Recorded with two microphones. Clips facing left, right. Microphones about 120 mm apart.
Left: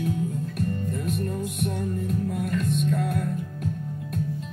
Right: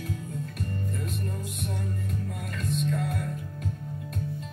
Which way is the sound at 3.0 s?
50° left (ahead or behind).